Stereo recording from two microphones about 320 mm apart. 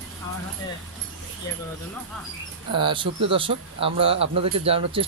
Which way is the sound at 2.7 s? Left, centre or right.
Centre.